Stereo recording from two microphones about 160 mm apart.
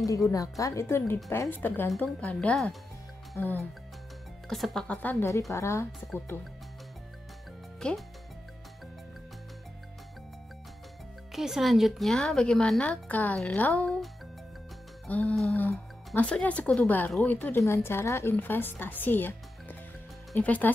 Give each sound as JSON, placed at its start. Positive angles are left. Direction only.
{"t": 0.3, "sound": "speech", "side_deg": 20}
{"t": 4.5, "sound": "speech", "side_deg": 0}
{"t": 7.8, "sound": "speech", "side_deg": 5}
{"t": 11.3, "sound": "a woman's voice", "side_deg": 0}